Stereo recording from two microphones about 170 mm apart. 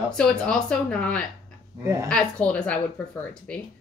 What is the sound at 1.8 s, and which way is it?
Speech, 15° right (ahead or behind).